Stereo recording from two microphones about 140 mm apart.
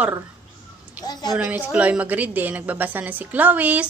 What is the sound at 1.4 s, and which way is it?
A woman's voice, 10° right (ahead or behind).